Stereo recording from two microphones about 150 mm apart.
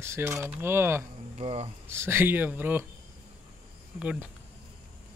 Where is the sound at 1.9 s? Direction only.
15° right (ahead or behind).